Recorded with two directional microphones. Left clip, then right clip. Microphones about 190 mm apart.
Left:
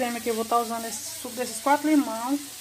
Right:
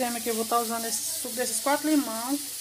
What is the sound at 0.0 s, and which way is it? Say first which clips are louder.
Sizzle: left 2 dB; centre (ahead or behind).